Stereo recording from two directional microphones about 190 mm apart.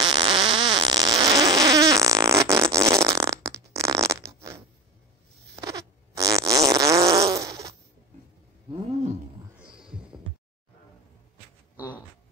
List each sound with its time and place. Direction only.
0.0 s fart: 25° right (ahead or behind)
5.6 s fart: 15° right (ahead or behind)
9.8 s heart sounds: 5° right (ahead or behind)